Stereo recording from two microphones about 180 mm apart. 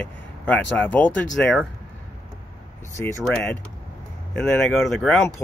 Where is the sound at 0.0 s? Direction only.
10° left (ahead or behind).